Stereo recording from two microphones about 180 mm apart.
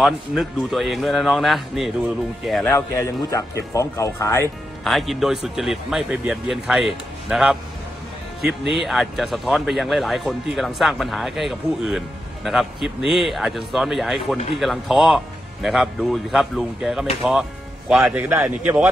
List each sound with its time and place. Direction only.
0.0 s a man's voice: centre (ahead or behind)
2.7 s a man's voice: 15° left (ahead or behind)
4.8 s a man's voice: centre (ahead or behind)